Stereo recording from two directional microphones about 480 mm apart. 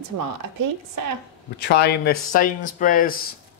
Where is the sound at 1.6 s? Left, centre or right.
Centre.